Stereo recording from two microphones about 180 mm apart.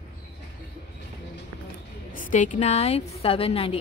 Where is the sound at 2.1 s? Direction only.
45° left (ahead or behind).